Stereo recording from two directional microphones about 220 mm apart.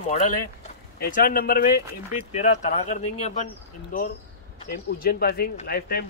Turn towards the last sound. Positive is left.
turn(degrees=45)  # may be behind; listen again after turning